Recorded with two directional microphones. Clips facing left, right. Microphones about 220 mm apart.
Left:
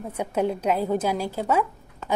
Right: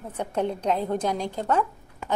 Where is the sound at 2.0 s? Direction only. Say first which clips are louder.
Left 2 dB; 10° right (ahead or behind).